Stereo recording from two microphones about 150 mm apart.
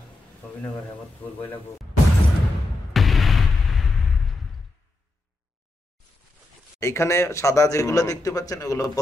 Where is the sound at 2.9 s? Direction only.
Centre (ahead or behind).